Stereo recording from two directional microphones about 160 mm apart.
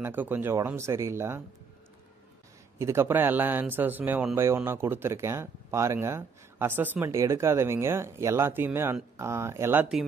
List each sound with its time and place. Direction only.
0.0 s speech: 10° right (ahead or behind)
2.8 s speech: 15° right (ahead or behind)